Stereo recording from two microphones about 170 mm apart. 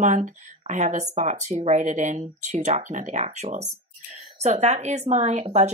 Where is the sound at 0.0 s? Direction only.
45° right (ahead or behind).